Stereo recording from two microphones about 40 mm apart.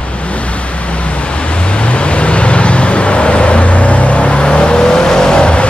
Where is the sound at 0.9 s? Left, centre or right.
Left.